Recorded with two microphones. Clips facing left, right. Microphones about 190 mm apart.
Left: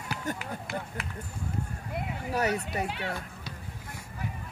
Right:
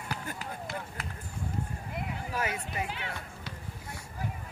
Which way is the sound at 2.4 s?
40° left (ahead or behind).